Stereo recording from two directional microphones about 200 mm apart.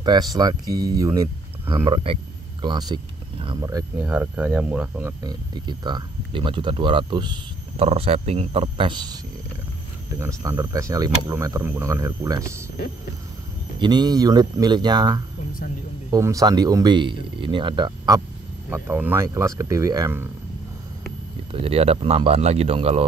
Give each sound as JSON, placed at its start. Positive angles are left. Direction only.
{"t": 0.0, "sound": "speech", "side_deg": -20}
{"t": 5.2, "sound": "speech", "side_deg": -20}
{"t": 13.7, "sound": "speech", "side_deg": -20}
{"t": 18.7, "sound": "speech", "side_deg": -10}
{"t": 21.5, "sound": "speech", "side_deg": -30}